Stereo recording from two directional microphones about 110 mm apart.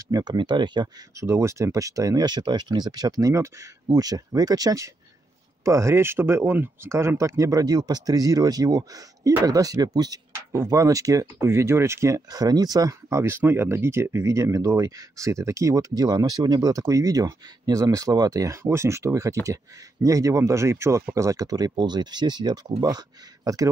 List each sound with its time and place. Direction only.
0.1 s speech: 40° right (ahead or behind)
1.2 s speech: 25° right (ahead or behind)